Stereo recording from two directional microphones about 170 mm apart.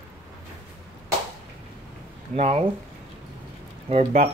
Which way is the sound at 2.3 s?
40° right (ahead or behind).